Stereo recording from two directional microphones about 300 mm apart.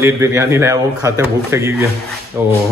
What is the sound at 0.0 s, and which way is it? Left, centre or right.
Speech, centre.